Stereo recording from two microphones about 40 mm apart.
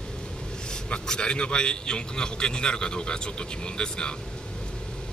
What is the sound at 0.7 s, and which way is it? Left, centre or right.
Speech, left.